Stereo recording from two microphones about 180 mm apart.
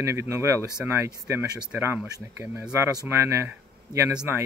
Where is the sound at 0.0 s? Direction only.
15° right (ahead or behind).